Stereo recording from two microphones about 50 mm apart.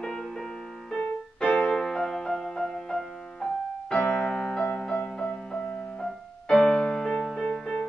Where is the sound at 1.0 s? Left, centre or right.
Left.